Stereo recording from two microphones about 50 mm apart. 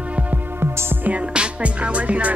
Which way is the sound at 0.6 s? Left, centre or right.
Right.